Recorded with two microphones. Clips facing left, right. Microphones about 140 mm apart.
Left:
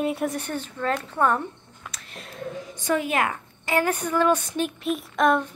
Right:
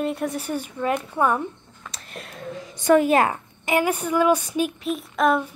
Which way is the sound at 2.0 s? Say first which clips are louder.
Right 7 dB; 55° right (ahead or behind).